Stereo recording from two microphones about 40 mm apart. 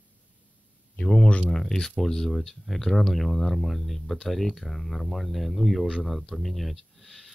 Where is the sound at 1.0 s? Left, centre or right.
Centre.